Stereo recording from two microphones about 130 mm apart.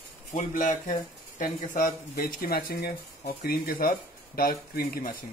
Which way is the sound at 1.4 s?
90° left.